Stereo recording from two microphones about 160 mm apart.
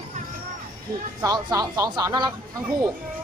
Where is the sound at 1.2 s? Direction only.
25° right (ahead or behind).